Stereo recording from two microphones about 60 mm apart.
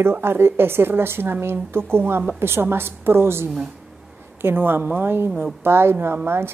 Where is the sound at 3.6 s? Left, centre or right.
Centre.